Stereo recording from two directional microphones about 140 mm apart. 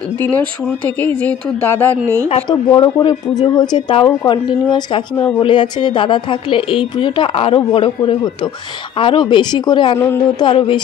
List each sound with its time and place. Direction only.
0.2 s speech: 10° left (ahead or behind)
2.5 s speech: 30° left (ahead or behind)